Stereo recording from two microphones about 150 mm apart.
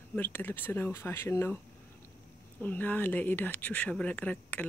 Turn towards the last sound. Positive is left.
turn(degrees=10)  # may be behind; listen again after turning